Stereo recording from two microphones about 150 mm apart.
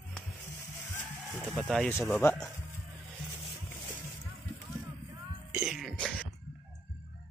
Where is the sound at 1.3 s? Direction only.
10° right (ahead or behind).